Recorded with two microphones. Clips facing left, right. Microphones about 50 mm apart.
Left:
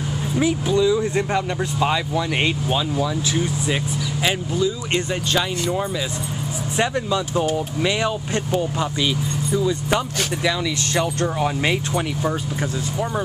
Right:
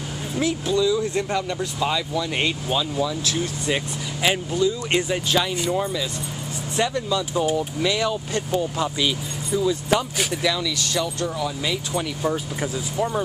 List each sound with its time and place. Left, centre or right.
0.4 s speech: centre
3.6 s speech: centre
6.8 s speech: centre
9.0 s speech: centre
11.0 s speech: left